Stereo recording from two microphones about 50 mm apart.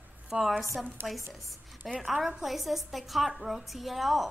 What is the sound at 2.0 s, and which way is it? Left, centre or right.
A woman's voice, centre.